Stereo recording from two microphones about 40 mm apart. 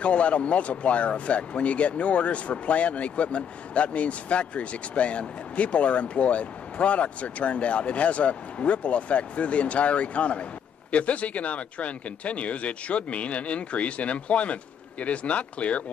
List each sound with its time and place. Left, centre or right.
0.0 s speech: left